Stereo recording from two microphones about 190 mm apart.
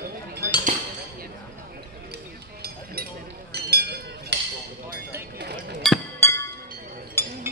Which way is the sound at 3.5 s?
55° right (ahead or behind).